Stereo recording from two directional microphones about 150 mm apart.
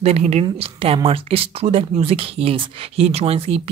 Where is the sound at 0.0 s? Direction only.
45° right (ahead or behind).